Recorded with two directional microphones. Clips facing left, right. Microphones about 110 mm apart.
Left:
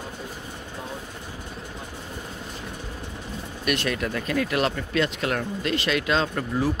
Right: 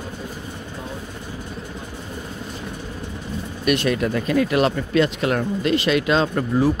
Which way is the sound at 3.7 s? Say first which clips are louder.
Right 6 dB; 15° right (ahead or behind).